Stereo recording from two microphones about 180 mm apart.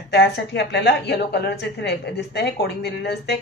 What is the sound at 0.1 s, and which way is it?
A woman's voice, 70° left (ahead or behind).